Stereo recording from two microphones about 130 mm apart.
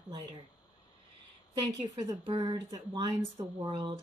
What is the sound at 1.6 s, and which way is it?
A woman's voice, 30° right (ahead or behind).